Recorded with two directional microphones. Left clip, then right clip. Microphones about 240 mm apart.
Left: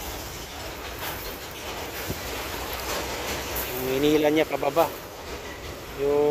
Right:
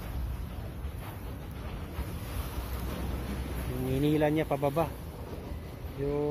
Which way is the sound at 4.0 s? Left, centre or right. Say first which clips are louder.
Left 7 dB; centre.